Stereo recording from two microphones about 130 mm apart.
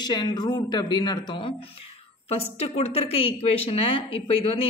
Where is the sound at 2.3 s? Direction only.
55° left (ahead or behind).